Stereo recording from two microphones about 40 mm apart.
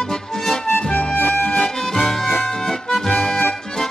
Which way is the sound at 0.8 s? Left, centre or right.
Left.